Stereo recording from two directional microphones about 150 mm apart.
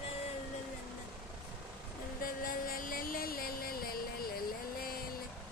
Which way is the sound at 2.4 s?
70° left (ahead or behind).